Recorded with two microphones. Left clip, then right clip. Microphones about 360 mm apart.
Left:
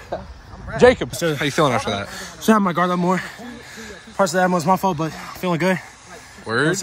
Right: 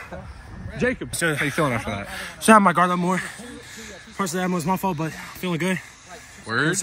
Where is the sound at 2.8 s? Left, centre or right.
Centre.